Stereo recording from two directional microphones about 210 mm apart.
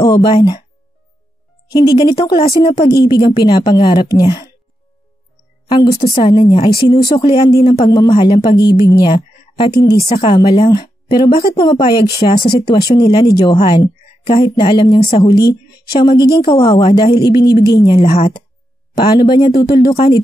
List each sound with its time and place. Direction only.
0.0 s speech: 20° left (ahead or behind)
1.7 s a woman's voice: 15° left (ahead or behind)
5.7 s a woman's voice: 15° left (ahead or behind)